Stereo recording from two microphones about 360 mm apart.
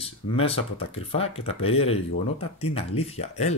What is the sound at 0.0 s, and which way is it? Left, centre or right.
Speech, centre.